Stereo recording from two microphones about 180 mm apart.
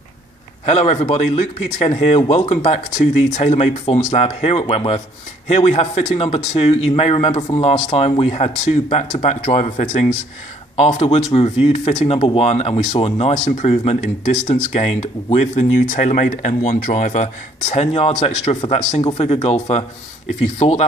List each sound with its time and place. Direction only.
0.7 s speech: 35° left (ahead or behind)